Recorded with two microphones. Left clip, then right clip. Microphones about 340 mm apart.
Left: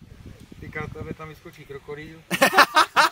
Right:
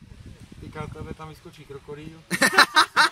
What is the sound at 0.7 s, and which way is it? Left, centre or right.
Speech, centre.